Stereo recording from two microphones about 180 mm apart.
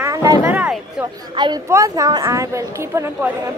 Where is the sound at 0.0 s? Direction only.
20° right (ahead or behind).